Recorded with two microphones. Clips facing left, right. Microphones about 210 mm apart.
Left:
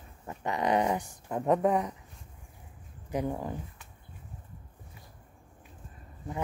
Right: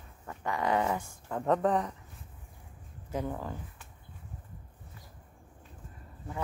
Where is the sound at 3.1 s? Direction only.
15° left (ahead or behind).